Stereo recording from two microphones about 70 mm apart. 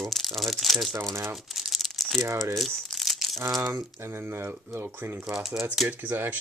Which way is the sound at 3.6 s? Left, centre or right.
Right.